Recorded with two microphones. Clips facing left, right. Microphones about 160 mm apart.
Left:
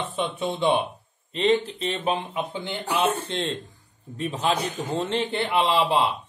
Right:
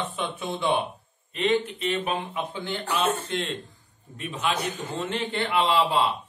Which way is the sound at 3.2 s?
30° left (ahead or behind).